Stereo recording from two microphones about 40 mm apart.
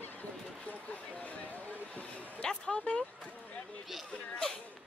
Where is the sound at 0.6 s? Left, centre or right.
Left.